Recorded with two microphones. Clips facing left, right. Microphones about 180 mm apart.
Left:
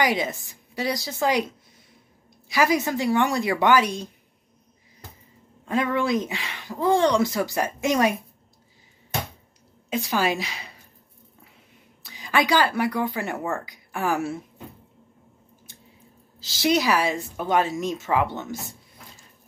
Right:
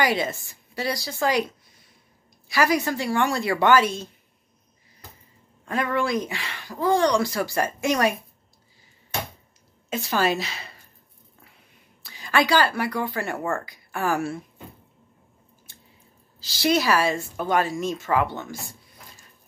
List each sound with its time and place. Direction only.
0.0 s speech: 15° left (ahead or behind)
2.4 s speech: 20° left (ahead or behind)
5.9 s speech: 20° left (ahead or behind)
9.8 s speech: 15° left (ahead or behind)
12.0 s a woman's voice: 15° left (ahead or behind)
16.3 s speech: 20° left (ahead or behind)